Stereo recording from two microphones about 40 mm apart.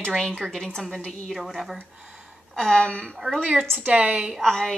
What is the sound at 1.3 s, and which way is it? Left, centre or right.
Speech, centre.